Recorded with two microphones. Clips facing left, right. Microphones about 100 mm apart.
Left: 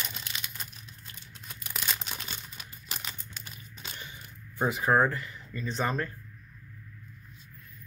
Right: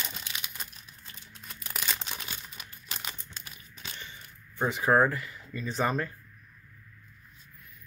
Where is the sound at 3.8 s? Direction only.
10° left (ahead or behind); by 6.1 s 5° right (ahead or behind).